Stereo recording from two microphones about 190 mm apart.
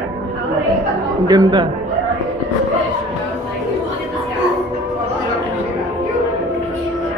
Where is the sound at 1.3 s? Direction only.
20° right (ahead or behind).